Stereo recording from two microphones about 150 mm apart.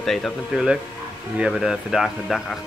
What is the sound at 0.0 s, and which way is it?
Speech, centre (ahead or behind).